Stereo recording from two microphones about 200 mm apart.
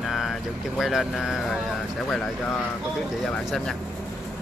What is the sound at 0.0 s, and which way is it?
Speech, centre (ahead or behind).